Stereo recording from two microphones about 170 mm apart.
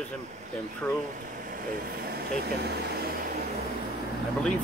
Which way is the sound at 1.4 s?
55° right (ahead or behind).